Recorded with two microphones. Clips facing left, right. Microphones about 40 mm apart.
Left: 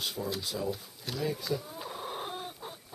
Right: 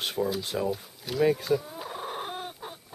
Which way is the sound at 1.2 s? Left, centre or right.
Right.